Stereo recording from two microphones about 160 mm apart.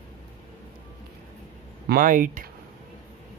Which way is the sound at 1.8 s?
60° right (ahead or behind).